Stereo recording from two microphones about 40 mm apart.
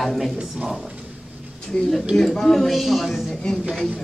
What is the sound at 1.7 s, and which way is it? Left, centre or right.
Speech, centre.